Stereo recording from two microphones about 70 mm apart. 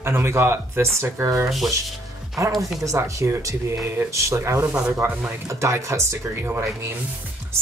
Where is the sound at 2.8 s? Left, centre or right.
Right.